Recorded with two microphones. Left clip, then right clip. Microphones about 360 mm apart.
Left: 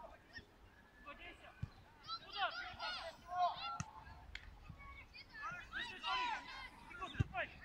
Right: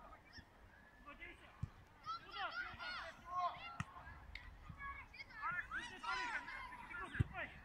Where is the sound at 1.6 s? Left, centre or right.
Left.